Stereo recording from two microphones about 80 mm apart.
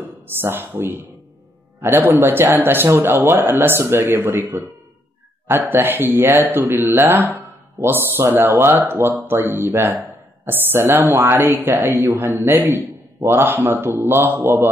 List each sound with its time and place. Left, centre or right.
0.3 s speech: right
5.5 s speech: right